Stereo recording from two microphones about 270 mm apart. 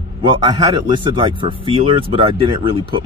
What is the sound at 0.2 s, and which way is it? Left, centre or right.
A man's voice, centre.